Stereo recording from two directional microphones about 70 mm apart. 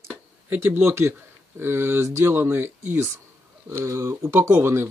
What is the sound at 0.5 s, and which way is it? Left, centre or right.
Speech, right.